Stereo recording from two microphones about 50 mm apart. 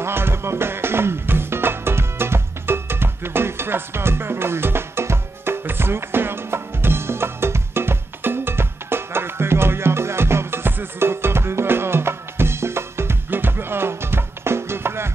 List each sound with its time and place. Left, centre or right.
0.0 s music: right